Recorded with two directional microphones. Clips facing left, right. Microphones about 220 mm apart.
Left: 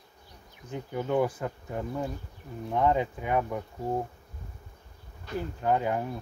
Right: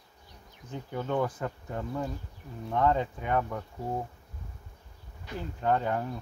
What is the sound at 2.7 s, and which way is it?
Speech, 10° left (ahead or behind).